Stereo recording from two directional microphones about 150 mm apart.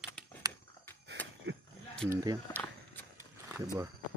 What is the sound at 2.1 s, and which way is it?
Speech, 25° right (ahead or behind).